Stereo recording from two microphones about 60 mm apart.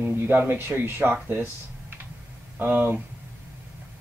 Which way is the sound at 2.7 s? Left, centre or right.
Right.